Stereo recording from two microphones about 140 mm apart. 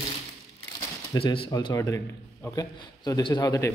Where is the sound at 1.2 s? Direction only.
40° left (ahead or behind).